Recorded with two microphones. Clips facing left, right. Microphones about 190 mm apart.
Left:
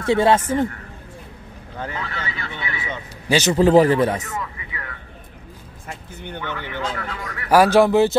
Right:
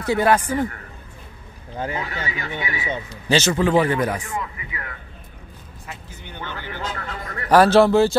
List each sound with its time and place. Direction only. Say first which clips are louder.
0.0 s a man's voice: left 2 dB; 25° left (ahead or behind)
1.8 s speech: right 2 dB; 15° right (ahead or behind)
3.3 s a man's voice: left 1 dB; 15° left (ahead or behind)
3.5 s speech: left 5 dB; 35° left (ahead or behind)
5.9 s speech: left 5 dB; 60° left (ahead or behind); by 7.3 s 75° left (ahead or behind)
7.4 s a man's voice: even; 10° left (ahead or behind)